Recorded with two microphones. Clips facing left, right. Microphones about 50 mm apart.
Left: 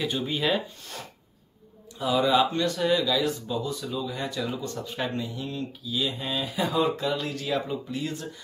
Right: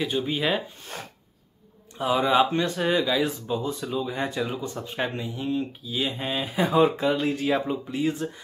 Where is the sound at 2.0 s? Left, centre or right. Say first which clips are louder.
Right 1 dB; right.